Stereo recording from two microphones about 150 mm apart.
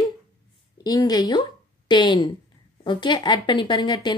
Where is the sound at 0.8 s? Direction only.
25° left (ahead or behind).